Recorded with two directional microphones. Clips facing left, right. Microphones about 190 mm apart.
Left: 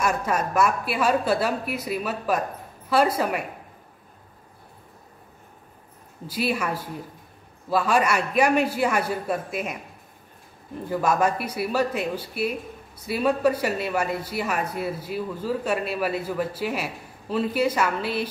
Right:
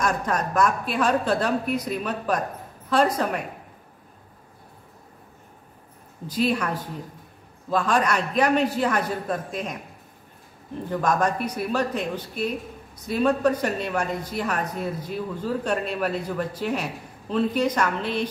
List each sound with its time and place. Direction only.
0.0 s speech: 10° left (ahead or behind)
6.2 s speech: 10° left (ahead or behind)
10.9 s speech: 5° left (ahead or behind)